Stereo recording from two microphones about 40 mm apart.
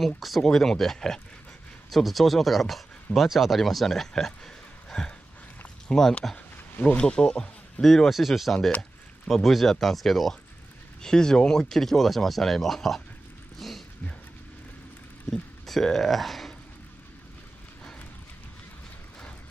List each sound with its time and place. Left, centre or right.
0.0 s speech: centre
4.8 s a sound: centre
5.9 s speech: centre
6.3 s a sound: left
7.0 s speech: left
7.8 s speech: centre
8.1 s speech: centre
11.0 s speech: centre
13.6 s a sound: centre
15.6 s speech: centre